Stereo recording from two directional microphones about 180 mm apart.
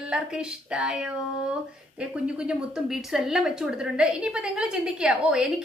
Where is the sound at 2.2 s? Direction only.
5° right (ahead or behind).